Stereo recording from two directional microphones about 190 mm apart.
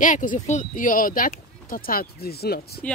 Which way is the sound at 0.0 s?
45° left (ahead or behind).